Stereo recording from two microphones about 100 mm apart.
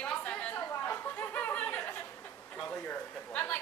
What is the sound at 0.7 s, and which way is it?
Chatter, 25° left (ahead or behind).